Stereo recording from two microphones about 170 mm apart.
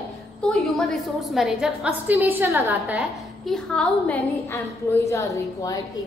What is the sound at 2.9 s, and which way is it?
A woman's voice, centre (ahead or behind).